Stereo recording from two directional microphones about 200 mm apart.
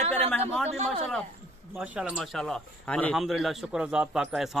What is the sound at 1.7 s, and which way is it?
Speech, 5° right (ahead or behind).